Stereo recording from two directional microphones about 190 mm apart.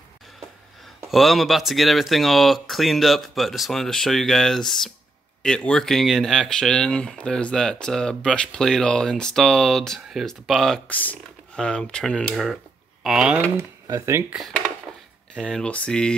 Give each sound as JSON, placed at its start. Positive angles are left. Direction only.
{"t": 1.1, "sound": "speech", "side_deg": 0}
{"t": 13.6, "sound": "speech", "side_deg": -15}
{"t": 14.3, "sound": "speech", "side_deg": 0}